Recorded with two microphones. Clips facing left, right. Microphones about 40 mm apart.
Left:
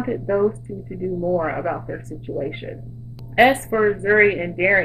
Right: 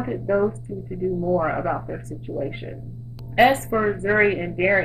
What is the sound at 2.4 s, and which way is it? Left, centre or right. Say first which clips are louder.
Speech: left 2 dB; left.